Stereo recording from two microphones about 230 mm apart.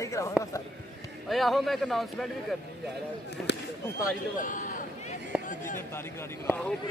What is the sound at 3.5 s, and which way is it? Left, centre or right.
Speech, left.